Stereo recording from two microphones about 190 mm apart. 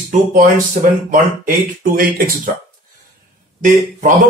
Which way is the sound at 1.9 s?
45° right (ahead or behind).